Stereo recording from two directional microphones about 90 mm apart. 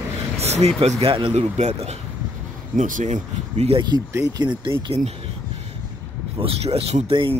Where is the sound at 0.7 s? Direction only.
90° right.